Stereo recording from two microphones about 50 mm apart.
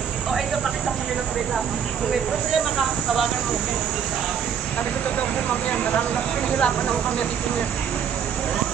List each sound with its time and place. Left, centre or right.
5.5 s speech: left